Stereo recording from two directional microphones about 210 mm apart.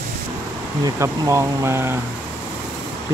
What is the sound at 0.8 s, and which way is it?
Speech, 15° right (ahead or behind).